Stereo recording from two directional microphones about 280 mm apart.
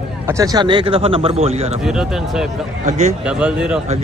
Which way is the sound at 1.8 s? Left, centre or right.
Centre.